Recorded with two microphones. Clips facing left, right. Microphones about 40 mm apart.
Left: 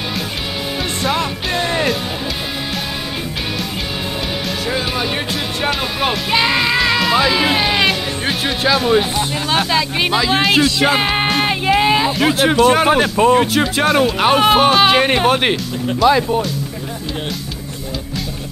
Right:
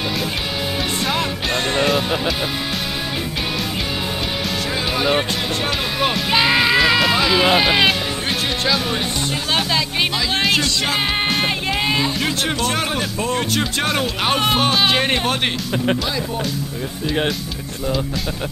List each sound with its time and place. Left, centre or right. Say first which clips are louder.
1.0 s music: left 5 dB; centre
6.1 s speech: even; centre
8.6 s speech: left 9 dB; centre
13.1 s speech: left 10 dB; left
13.5 s speech: left 5 dB; centre
15.9 s speech: left 1 dB; right